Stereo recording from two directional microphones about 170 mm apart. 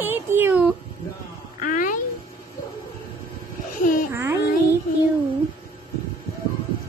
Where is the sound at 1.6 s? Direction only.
50° left (ahead or behind).